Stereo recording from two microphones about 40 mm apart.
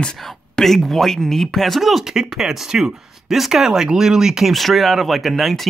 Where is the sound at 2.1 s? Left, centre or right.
Centre.